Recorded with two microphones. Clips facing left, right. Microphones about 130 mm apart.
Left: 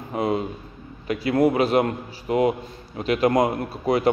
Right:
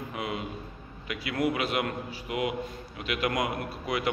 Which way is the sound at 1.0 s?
35° left (ahead or behind).